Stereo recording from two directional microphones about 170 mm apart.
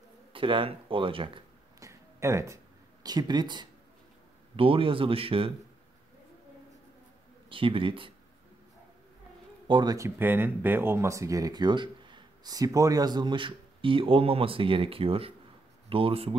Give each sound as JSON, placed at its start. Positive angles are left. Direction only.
{"t": 0.3, "sound": "speech", "side_deg": -30}
{"t": 1.8, "sound": "a sound", "side_deg": -15}
{"t": 4.6, "sound": "speech", "side_deg": -30}
{"t": 7.4, "sound": "speech", "side_deg": -30}
{"t": 9.7, "sound": "speech", "side_deg": -25}